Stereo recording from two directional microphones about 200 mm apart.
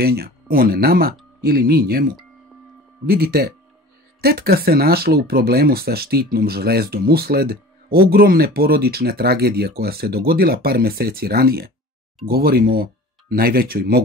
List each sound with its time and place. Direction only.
0.0 s speech: 50° right (ahead or behind)